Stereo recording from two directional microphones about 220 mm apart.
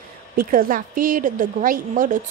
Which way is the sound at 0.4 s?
40° right (ahead or behind).